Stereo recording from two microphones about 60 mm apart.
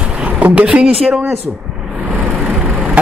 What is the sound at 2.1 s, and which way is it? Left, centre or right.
Vehicle, right.